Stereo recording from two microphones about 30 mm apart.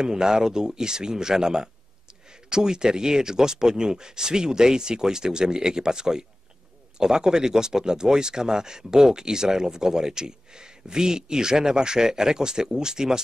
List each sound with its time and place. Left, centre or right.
0.0 s speech: right